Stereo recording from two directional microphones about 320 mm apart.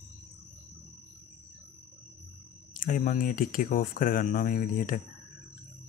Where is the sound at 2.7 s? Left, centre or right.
Left.